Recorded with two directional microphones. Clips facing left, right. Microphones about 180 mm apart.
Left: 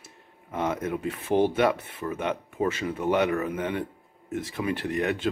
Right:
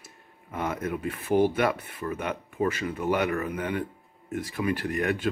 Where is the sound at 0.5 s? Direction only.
25° left (ahead or behind).